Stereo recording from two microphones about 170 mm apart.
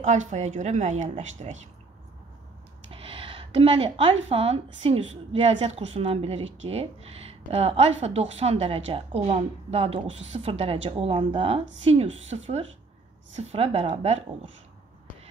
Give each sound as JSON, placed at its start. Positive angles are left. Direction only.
{"t": 0.0, "sound": "a woman's voice", "side_deg": -45}
{"t": 2.9, "sound": "a woman's voice", "side_deg": -30}